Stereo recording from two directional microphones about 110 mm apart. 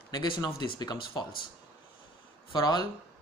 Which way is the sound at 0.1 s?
40° left (ahead or behind).